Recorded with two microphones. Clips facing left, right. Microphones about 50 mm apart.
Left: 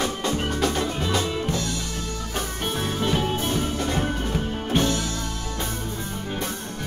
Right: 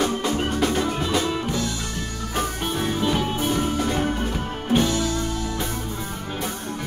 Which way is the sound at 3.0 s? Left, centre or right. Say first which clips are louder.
Even; centre.